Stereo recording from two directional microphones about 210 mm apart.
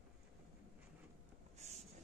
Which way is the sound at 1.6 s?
30° right (ahead or behind).